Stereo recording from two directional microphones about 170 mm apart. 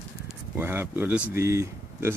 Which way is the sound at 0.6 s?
10° right (ahead or behind).